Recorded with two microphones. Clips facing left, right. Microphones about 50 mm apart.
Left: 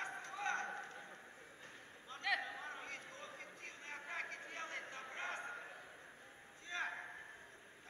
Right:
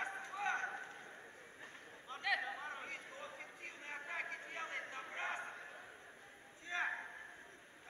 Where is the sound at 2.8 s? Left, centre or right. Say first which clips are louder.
Right 2 dB; centre.